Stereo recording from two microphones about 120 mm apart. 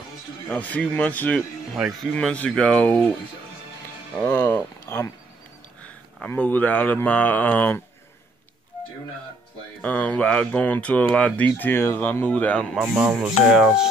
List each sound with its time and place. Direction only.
0.5 s speech: 10° left (ahead or behind)
1.8 s speech: 5° right (ahead or behind)
2.1 s speech: 10° left (ahead or behind)
4.5 s speech: 20° left (ahead or behind)
6.2 s speech: 15° left (ahead or behind)
9.8 s speech: 15° left (ahead or behind)
12.9 s speech: 10° right (ahead or behind)